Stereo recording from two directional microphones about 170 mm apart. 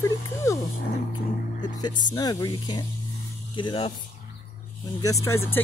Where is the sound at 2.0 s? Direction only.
25° left (ahead or behind).